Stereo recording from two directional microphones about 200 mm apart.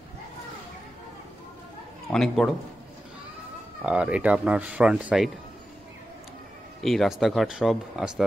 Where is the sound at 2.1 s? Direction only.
Centre (ahead or behind).